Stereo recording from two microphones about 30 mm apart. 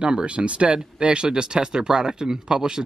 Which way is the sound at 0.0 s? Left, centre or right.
Right.